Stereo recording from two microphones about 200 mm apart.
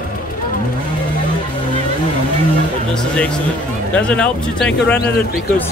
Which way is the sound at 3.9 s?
5° left (ahead or behind).